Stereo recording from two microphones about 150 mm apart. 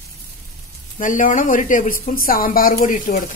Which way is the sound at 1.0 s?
60° left (ahead or behind).